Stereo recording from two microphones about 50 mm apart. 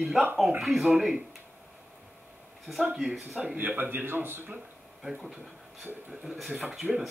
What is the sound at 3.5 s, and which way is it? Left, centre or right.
A man's voice, right.